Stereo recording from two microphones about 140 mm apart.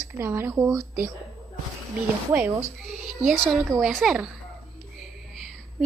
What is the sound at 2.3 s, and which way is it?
Speech, 10° right (ahead or behind).